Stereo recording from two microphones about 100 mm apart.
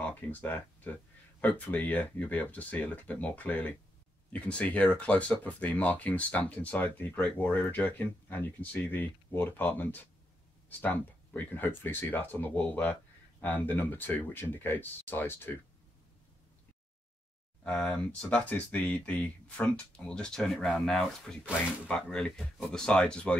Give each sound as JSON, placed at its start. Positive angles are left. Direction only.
{"t": 0.0, "sound": "speech", "side_deg": 15}
{"t": 17.6, "sound": "speech", "side_deg": 10}